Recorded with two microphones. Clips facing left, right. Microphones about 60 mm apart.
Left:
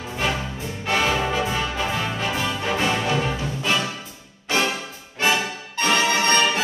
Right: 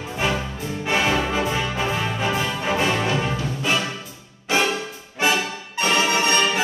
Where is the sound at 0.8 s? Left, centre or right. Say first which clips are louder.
Even; centre.